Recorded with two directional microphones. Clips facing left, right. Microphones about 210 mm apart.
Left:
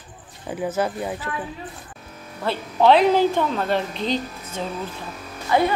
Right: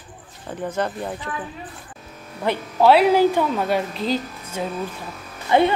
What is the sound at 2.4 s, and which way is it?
Speech, 15° right (ahead or behind).